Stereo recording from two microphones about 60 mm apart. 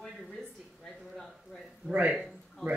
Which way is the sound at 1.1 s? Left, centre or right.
Centre.